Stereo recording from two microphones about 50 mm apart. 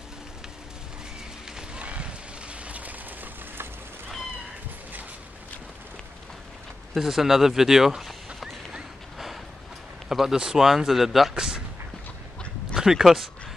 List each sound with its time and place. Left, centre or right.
1.8 s a sound: right
7.0 s speech: centre
10.0 s speech: centre
11.3 s speech: centre
12.7 s speech: centre